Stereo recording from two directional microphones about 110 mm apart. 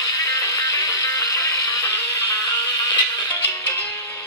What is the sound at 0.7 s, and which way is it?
Music, 30° left (ahead or behind).